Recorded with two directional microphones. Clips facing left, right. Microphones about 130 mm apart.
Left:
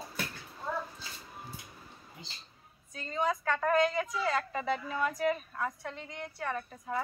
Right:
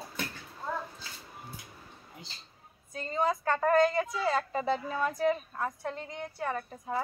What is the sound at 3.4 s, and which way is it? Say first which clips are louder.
A woman's voice: right 4 dB; 30° right (ahead or behind).